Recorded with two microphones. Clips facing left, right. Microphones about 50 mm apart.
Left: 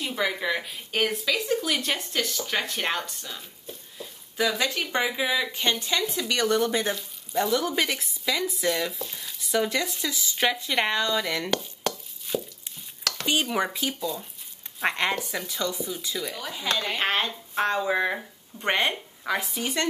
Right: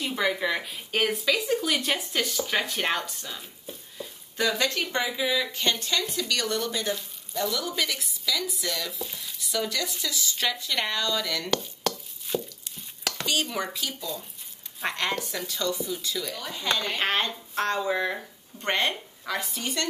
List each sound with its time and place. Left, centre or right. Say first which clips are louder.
0.0 s speech: right 1 dB; centre
4.9 s speech: left 4 dB; centre
9.0 s frying: even; centre
9.5 s speech: left 4 dB; left
11.5 s a sound: even; centre
12.7 s stir: even; centre
13.3 s speech: left 4 dB; centre
13.9 s speech: left 4 dB; centre